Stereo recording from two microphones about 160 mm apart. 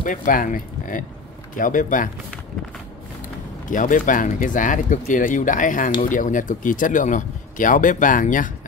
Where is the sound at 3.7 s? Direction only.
55° left (ahead or behind).